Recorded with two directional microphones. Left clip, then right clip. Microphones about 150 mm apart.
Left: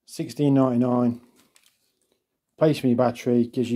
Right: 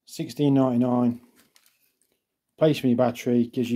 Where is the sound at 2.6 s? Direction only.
5° left (ahead or behind).